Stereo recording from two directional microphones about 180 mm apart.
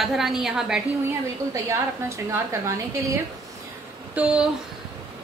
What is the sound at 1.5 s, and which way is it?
A woman's voice, 15° right (ahead or behind).